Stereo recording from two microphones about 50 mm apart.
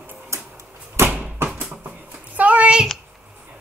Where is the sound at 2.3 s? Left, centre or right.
Right.